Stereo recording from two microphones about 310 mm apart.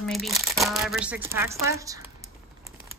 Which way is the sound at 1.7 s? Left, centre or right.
Centre.